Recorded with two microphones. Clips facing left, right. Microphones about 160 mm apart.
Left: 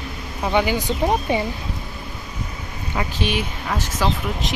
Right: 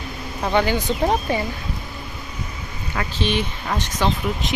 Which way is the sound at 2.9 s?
10° left (ahead or behind).